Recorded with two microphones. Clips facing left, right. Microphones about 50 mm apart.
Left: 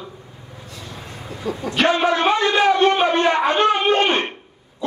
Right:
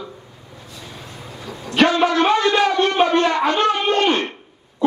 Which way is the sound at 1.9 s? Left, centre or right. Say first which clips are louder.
Right 1 dB; left.